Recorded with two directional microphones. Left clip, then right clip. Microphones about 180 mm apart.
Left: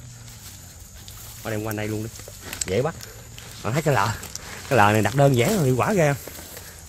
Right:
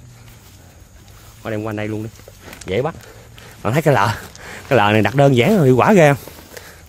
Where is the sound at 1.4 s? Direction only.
60° right (ahead or behind).